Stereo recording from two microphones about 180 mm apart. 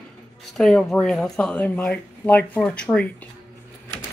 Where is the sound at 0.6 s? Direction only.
5° left (ahead or behind).